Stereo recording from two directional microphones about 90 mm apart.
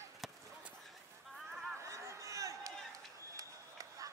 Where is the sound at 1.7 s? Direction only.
35° right (ahead or behind).